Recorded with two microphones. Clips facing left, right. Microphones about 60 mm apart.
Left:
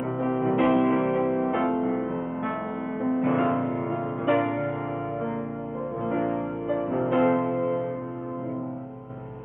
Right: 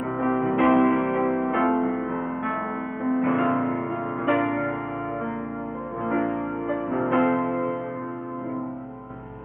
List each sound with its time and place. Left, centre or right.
0.2 s music: right; by 1.7 s centre
3.0 s music: centre
4.3 s music: centre
6.2 s music: centre
6.9 s music: centre
7.2 s music: centre